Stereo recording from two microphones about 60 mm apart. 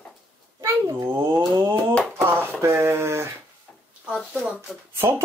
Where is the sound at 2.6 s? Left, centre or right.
Right.